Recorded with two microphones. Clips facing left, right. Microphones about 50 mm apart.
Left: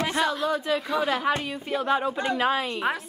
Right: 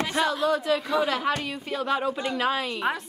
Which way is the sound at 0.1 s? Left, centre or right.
Centre.